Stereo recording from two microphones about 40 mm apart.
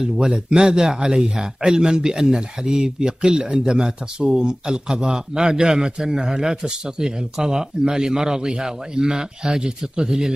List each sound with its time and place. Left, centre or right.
0.3 s a man's voice: right